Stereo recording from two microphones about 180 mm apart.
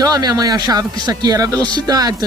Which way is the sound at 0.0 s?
20° right (ahead or behind).